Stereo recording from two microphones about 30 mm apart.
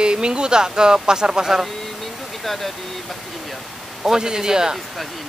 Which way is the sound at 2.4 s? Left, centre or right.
Centre.